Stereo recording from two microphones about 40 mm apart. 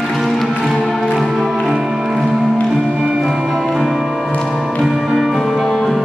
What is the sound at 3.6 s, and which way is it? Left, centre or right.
Music, centre.